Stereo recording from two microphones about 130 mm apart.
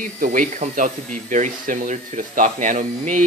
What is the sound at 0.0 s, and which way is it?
Speech, 90° right.